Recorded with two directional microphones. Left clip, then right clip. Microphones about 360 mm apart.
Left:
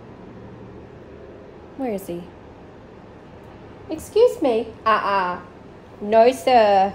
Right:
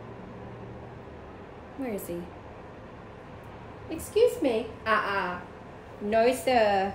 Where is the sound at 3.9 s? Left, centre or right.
Centre.